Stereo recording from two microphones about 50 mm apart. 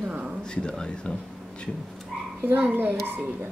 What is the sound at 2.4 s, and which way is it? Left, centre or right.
Speech, right.